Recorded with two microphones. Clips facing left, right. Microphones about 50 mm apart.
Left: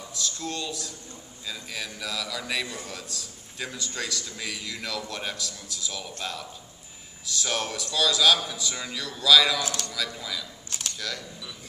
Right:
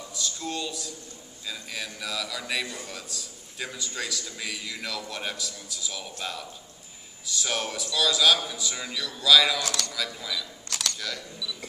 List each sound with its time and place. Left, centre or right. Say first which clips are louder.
0.1 s a man's voice: even; centre
10.7 s computer keyboard: right 5 dB; right
11.0 s a man's voice: left 1 dB; centre